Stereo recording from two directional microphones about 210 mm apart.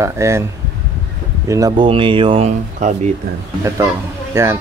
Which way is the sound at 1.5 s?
20° right (ahead or behind).